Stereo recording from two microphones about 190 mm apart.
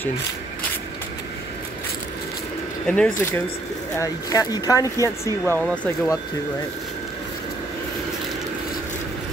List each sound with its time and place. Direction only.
2.9 s speech: 10° left (ahead or behind)